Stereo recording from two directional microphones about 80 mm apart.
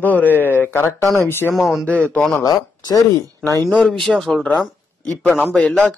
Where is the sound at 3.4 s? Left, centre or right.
Left.